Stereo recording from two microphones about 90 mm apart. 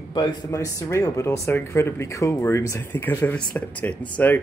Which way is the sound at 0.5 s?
35° left (ahead or behind).